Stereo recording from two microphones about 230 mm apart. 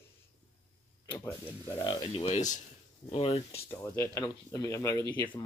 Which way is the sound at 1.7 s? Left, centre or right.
Centre.